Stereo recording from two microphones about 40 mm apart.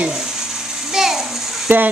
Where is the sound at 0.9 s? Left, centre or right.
Centre.